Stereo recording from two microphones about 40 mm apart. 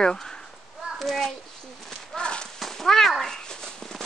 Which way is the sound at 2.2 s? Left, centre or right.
Left.